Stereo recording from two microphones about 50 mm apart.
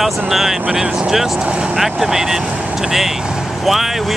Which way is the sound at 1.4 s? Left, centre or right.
Right.